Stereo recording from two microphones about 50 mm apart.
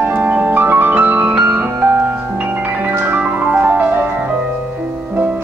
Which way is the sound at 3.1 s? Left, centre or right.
Right.